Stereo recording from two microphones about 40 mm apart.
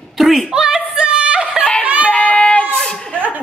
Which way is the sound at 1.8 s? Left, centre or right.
Right.